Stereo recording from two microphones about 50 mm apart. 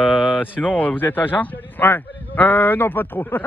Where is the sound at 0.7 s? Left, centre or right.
Left.